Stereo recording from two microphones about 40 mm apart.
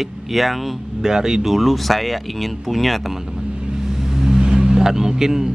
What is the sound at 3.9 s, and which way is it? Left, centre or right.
Vehicle, centre.